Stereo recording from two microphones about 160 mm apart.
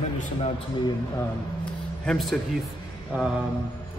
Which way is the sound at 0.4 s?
30° left (ahead or behind).